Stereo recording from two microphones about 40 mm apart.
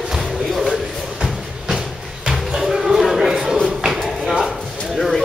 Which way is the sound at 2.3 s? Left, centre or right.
Centre.